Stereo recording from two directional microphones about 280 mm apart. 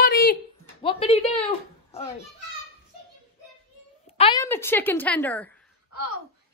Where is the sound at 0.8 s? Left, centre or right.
Centre.